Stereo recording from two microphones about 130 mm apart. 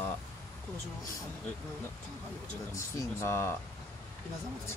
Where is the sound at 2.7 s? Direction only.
25° left (ahead or behind).